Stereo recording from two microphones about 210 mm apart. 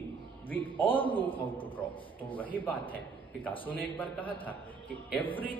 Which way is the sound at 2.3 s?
10° left (ahead or behind).